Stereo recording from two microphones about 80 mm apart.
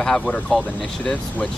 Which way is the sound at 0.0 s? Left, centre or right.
Centre.